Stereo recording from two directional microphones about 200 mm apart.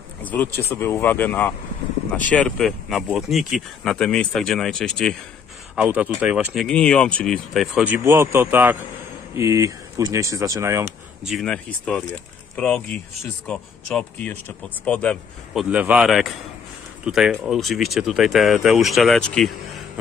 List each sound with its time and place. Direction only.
0.2 s speech: 10° left (ahead or behind)
5.8 s speech: 5° right (ahead or behind)
11.2 s speech: centre (ahead or behind)
15.7 s speech: 5° right (ahead or behind)